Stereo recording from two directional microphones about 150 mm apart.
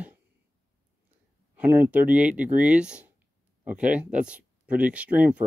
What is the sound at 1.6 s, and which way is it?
Speech, 10° right (ahead or behind).